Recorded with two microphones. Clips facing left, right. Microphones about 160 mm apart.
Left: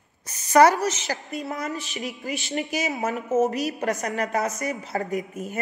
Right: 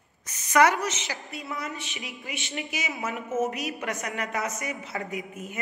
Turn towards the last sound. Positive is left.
turn(degrees=40)  # may be behind; listen again after turning